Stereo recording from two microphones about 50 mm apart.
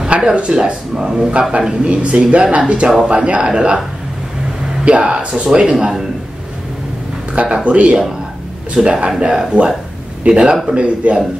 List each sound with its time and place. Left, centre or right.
0.2 s speech: centre
4.8 s speech: right
7.3 s speech: right
8.8 s speech: centre